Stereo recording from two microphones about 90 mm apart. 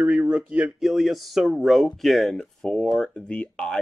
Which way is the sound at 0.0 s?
10° right (ahead or behind).